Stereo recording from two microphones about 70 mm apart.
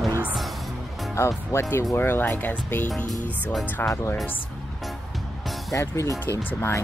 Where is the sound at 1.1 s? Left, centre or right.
Left.